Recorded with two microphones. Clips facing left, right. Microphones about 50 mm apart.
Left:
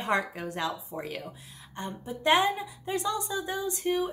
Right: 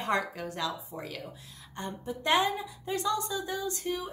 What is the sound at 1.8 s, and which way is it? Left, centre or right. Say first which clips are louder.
A woman's voice: even; centre.